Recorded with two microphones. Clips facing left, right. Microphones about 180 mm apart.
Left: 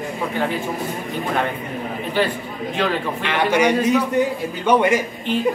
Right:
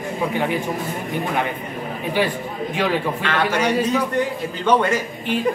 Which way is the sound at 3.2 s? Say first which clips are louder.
Left 2 dB; 15° left (ahead or behind).